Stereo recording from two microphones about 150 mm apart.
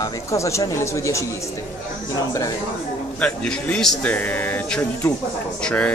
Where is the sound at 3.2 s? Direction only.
5° left (ahead or behind).